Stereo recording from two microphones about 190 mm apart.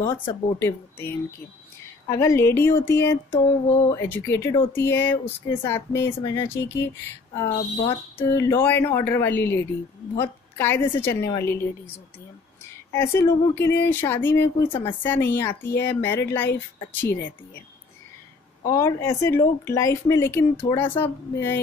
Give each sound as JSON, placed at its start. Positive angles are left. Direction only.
{"t": 0.0, "sound": "speech", "side_deg": 25}
{"t": 0.6, "sound": "speech", "side_deg": 10}
{"t": 3.3, "sound": "a sound", "side_deg": 40}
{"t": 3.9, "sound": "speech", "side_deg": 15}
{"t": 8.2, "sound": "speech", "side_deg": 15}
{"t": 12.6, "sound": "speech", "side_deg": 15}
{"t": 18.6, "sound": "speech", "side_deg": 15}